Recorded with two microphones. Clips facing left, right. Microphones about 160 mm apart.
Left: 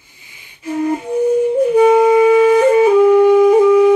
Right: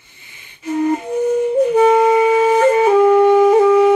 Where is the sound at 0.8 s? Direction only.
10° left (ahead or behind).